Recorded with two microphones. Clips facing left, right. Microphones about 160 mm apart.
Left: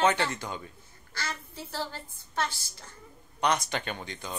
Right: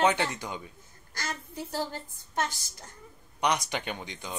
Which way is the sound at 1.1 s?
45° right (ahead or behind).